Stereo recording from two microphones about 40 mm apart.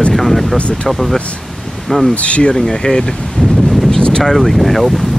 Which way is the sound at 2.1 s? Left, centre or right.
Left.